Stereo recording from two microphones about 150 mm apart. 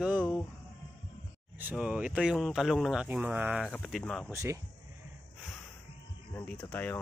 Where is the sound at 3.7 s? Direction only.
5° left (ahead or behind).